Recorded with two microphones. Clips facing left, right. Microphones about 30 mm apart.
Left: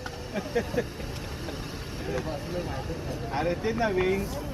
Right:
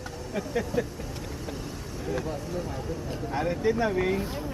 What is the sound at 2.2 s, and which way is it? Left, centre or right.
Speech, left.